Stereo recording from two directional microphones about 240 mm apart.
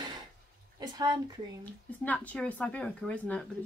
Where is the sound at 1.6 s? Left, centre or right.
Centre.